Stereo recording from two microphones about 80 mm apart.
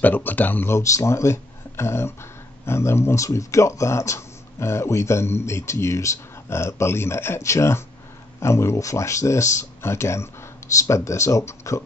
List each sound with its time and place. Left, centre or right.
0.0 s speech: left